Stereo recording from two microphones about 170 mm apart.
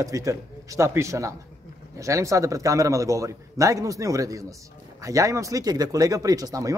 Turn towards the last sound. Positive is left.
turn(degrees=-20)  # may be behind; listen again after turning